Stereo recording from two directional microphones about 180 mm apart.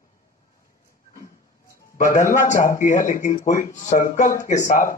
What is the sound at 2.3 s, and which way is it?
A man's voice, 45° left (ahead or behind).